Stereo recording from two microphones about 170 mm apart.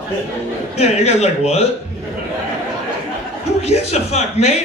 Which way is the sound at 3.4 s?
40° left (ahead or behind).